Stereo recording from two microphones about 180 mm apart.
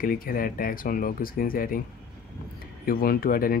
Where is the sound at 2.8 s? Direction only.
55° left (ahead or behind).